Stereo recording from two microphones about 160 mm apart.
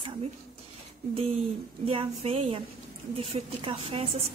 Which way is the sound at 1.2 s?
35° right (ahead or behind).